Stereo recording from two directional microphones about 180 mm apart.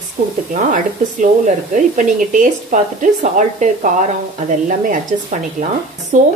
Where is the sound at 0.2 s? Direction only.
55° right (ahead or behind).